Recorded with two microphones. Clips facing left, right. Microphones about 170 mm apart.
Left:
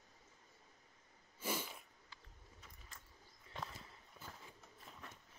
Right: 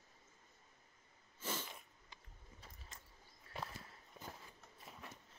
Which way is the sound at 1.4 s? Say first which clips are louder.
Left 3 dB; 10° left (ahead or behind).